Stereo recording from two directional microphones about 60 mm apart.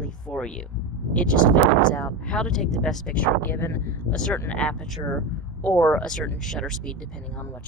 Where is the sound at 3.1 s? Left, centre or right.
Left.